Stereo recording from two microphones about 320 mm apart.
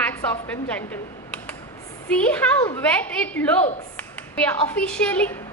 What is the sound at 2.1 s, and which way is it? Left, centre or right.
A woman's voice, centre.